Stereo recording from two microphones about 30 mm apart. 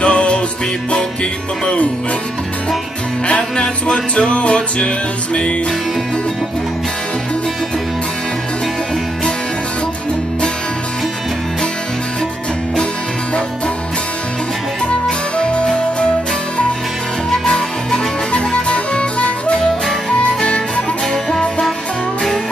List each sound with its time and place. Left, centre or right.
0.0 s music: left
3.3 s music: left
15.0 s music: left
17.5 s music: left